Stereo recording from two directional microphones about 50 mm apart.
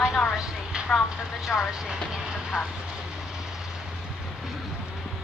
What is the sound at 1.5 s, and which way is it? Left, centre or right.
Speech, centre.